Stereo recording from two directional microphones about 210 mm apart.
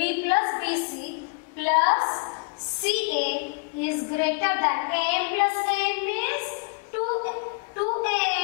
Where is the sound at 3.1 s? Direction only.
50° left (ahead or behind).